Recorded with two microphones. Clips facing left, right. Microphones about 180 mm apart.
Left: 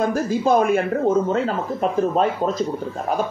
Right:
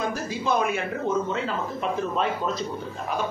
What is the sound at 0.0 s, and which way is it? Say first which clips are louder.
Speech: left 8 dB; 45° left (ahead or behind).